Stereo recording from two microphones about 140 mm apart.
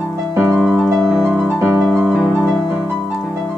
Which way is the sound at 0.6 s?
Centre (ahead or behind).